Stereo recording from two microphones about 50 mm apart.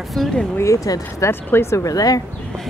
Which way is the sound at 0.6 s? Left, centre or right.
Left.